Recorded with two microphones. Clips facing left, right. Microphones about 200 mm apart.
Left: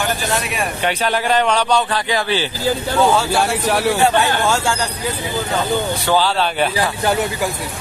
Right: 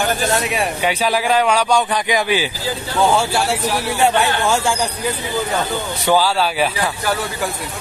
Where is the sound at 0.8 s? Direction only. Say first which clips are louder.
Even; 10° right (ahead or behind).